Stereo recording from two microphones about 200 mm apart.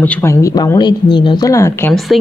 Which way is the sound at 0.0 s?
10° left (ahead or behind).